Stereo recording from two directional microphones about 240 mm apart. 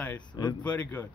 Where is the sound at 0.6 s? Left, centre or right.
Centre.